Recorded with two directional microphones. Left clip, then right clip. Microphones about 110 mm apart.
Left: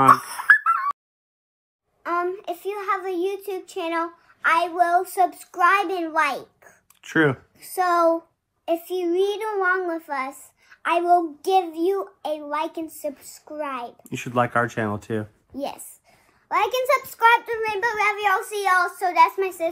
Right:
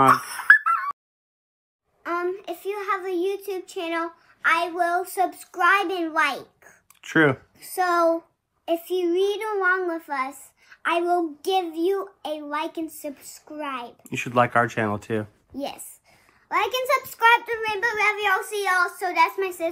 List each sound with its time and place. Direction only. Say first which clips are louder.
0.3 s fowl: even; 15° left (ahead or behind)
2.0 s child singing: left 2 dB; 25° left (ahead or behind)
7.0 s speech: right 1 dB; 15° right (ahead or behind)
7.5 s a woman's voice: left 1 dB; 15° left (ahead or behind)
14.0 s speech: right 2 dB; 25° right (ahead or behind)
15.5 s a sound: left 2 dB; 20° left (ahead or behind)
16.8 s a child's voice: left 1 dB; 10° left (ahead or behind)
17.6 s a child's voice: even; 20° left (ahead or behind)